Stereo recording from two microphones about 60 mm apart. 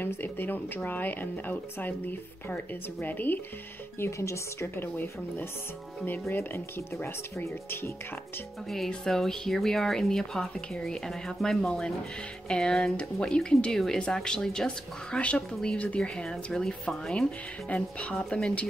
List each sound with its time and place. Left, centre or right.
0.0 s speech: left
4.0 s speech: left
4.7 s speech: left
8.6 s speech: centre
17.6 s speech: left